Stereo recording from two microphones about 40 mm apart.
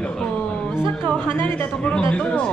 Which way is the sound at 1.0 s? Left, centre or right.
Left.